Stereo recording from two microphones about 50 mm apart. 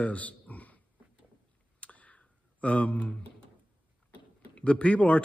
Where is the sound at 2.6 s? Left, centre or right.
Left.